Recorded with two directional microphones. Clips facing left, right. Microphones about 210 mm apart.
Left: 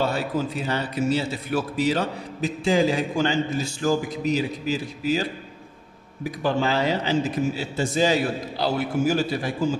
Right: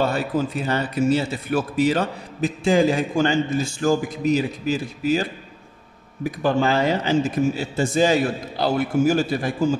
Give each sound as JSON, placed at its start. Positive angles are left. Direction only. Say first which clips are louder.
{"t": 0.0, "sound": "a man's voice", "louder": "right 3 dB", "side_deg": -50}
{"t": 6.4, "sound": "a man's voice", "louder": "right 3 dB", "side_deg": -50}